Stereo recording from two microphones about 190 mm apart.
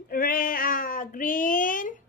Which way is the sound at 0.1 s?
50° left (ahead or behind).